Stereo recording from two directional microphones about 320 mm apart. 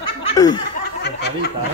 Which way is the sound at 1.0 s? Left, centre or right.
Left.